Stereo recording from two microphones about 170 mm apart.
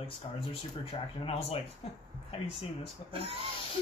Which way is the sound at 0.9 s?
35° left (ahead or behind).